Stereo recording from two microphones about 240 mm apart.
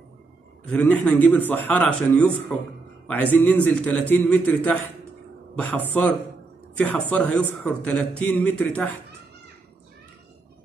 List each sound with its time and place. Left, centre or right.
0.7 s speech: centre